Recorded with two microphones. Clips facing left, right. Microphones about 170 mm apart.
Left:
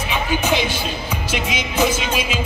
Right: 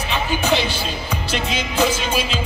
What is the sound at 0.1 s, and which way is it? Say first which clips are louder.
Music: even; 10° left (ahead or behind).